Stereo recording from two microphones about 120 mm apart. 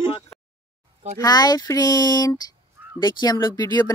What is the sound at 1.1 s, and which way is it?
Speech, 35° left (ahead or behind).